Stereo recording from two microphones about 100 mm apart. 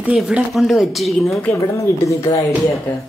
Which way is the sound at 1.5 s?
30° left (ahead or behind).